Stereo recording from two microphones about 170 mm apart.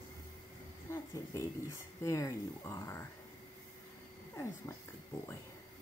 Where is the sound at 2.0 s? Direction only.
20° left (ahead or behind).